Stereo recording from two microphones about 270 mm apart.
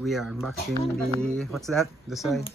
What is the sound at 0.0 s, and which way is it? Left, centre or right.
Speech, centre.